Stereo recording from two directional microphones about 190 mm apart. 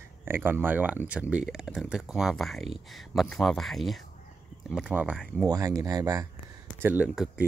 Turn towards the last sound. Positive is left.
turn(degrees=-10)  # may be behind; listen again after turning